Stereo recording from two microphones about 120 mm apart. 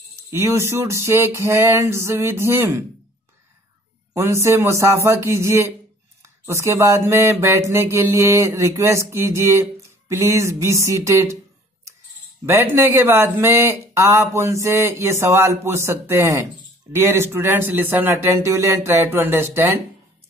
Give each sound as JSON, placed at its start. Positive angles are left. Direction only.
{"t": 0.1, "sound": "mantra", "side_deg": -25}
{"t": 4.1, "sound": "mantra", "side_deg": -25}
{"t": 12.4, "sound": "mantra", "side_deg": -20}